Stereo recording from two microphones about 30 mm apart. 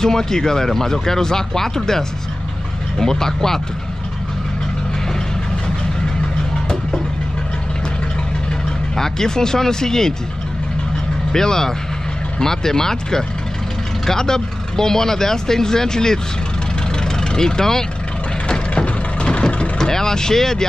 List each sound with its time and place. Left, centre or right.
0.0 s speech: centre
3.0 s speech: centre
8.9 s speech: centre
11.3 s speech: centre
17.0 s vehicle: left
18.5 s vehicle: left
19.8 s speech: centre